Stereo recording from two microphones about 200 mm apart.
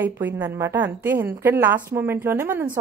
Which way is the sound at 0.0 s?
10° right (ahead or behind).